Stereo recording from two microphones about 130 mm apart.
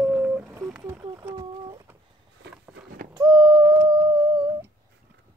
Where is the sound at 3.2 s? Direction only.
35° right (ahead or behind).